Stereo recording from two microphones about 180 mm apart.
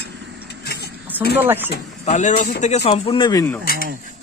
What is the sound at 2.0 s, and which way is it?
Speech, 40° left (ahead or behind).